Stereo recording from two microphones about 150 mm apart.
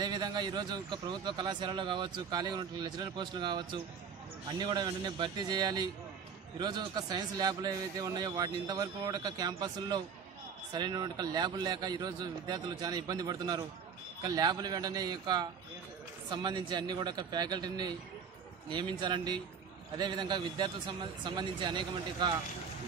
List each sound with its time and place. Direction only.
0.0 s a man's voice: 30° right (ahead or behind)